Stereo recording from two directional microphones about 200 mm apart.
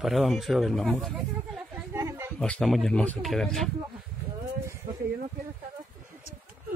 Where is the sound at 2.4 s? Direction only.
5° left (ahead or behind).